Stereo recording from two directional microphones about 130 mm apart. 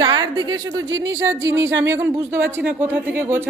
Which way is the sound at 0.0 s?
35° right (ahead or behind).